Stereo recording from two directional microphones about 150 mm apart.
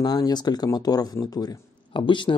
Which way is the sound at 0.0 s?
25° left (ahead or behind).